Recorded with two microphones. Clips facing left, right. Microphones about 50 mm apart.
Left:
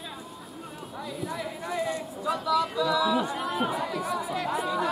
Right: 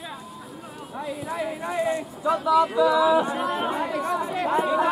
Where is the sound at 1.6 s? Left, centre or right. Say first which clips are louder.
Right 4 dB; right.